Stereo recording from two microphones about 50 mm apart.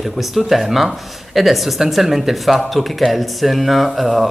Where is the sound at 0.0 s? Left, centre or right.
Centre.